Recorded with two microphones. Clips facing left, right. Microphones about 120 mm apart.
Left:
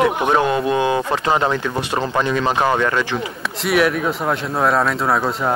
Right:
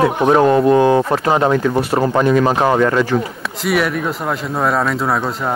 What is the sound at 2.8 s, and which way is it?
Speech, 5° right (ahead or behind).